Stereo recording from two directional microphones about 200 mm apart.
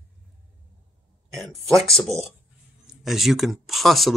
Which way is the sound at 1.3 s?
Centre (ahead or behind).